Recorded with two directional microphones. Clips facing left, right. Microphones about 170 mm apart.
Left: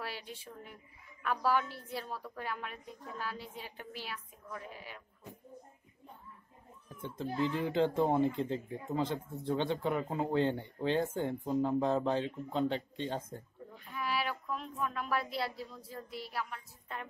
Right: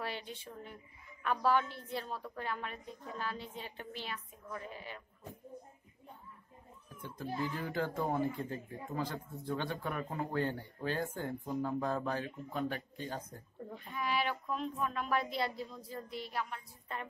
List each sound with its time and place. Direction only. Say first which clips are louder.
0.0 s a woman's voice: right 2 dB; 5° left (ahead or behind)
7.0 s speech: left 4 dB; 20° left (ahead or behind)
13.9 s speech: right 1 dB; 5° left (ahead or behind)